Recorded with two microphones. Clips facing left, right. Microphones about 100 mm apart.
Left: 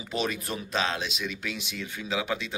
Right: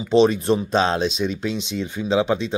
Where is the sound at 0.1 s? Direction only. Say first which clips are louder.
Right 15 dB; 30° right (ahead or behind).